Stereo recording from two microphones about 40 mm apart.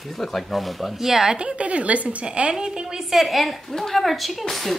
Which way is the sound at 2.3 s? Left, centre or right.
Right.